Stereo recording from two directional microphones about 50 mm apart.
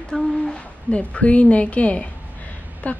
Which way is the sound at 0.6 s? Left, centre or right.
Left.